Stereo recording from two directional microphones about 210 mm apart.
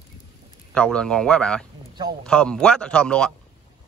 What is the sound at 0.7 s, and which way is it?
A man's voice, 5° left (ahead or behind).